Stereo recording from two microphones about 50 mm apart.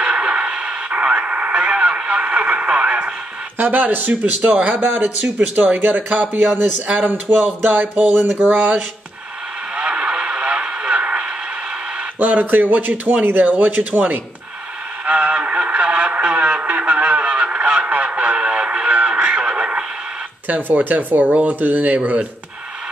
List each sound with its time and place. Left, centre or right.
0.0 s radio: right
3.5 s speech: right
6.0 s speech: right
6.3 s speech: right
9.8 s vehicle: right
12.2 s speech: right
15.0 s radio: right
20.4 s speech: right